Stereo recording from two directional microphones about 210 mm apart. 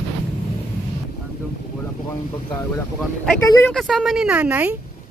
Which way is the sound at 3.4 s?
15° left (ahead or behind).